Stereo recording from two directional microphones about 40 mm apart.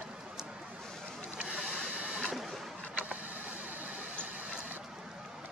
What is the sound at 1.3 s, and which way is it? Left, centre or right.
Vehicle, right.